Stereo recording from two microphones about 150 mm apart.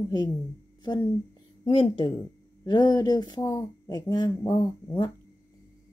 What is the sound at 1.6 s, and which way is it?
Speech, 35° left (ahead or behind).